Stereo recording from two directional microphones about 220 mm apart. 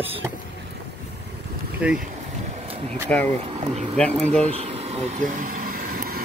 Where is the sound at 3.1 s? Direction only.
5° left (ahead or behind).